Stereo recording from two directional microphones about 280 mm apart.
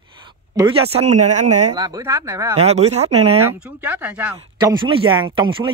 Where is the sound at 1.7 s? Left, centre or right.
Centre.